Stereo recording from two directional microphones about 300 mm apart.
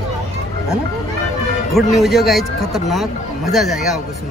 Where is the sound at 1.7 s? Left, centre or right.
Centre.